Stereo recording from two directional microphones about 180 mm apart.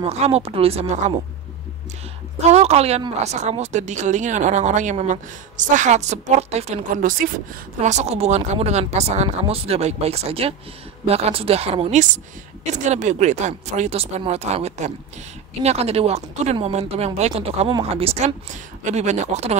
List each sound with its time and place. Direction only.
0.1 s speech: 35° right (ahead or behind)
2.4 s speech: 35° right (ahead or behind)